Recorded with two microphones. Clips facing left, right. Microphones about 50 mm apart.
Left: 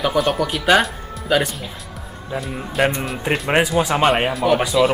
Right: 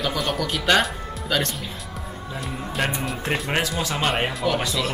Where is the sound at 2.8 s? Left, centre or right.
Centre.